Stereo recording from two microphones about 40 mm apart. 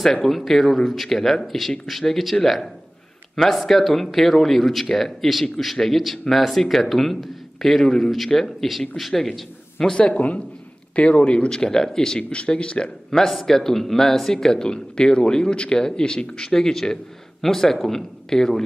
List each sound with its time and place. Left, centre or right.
0.0 s speech: centre; by 11.5 s left
11.5 s speech: centre
13.1 s speech: centre